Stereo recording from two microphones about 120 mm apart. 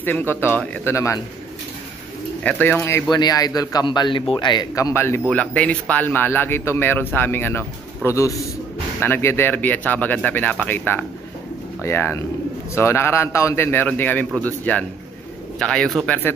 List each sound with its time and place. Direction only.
0.0 s speech: 15° left (ahead or behind)
2.4 s speech: 15° left (ahead or behind)
3.1 s a man's voice: 35° left (ahead or behind)
4.9 s speech: 20° left (ahead or behind)